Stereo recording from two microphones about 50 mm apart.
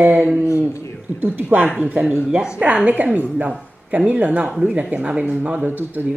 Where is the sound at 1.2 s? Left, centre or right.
Right.